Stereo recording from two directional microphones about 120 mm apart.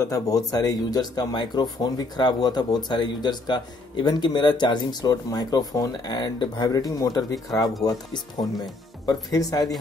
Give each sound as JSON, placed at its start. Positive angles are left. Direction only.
{"t": 0.0, "sound": "speech", "side_deg": 30}